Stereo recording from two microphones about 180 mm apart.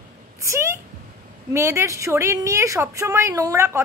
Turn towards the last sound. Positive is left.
turn(degrees=-15)  # may be behind; listen again after turning